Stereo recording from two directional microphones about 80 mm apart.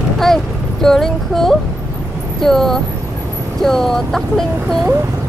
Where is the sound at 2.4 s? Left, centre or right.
Centre.